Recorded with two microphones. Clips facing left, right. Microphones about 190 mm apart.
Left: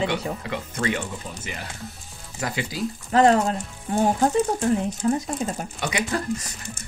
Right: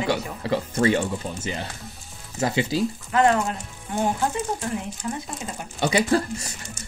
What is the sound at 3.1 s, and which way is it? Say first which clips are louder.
Frying: left 3 dB; 35° left (ahead or behind).